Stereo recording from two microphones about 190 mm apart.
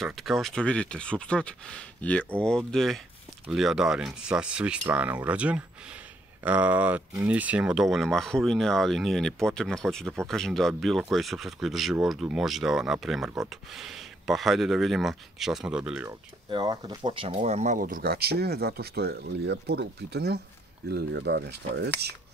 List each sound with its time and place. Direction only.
0.0 s speech: centre (ahead or behind)
16.1 s speech: 20° right (ahead or behind); by 22.1 s 60° right (ahead or behind)